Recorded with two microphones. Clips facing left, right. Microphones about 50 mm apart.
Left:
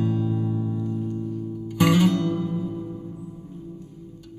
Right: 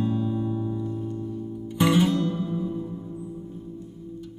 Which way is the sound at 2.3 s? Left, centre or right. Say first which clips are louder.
Left 1 dB; left.